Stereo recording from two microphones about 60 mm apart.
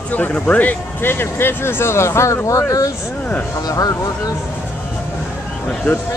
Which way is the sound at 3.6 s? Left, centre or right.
Left.